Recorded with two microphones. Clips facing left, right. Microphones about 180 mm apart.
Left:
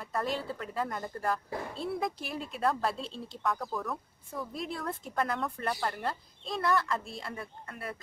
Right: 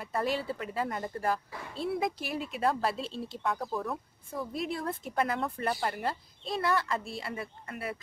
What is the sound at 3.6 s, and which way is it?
Speech, 30° right (ahead or behind).